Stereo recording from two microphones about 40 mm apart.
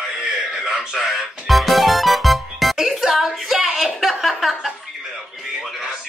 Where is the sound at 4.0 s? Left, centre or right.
Centre.